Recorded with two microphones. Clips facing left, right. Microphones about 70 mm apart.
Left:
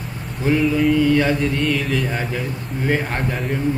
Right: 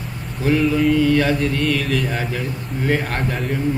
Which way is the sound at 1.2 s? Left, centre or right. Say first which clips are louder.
Even; centre.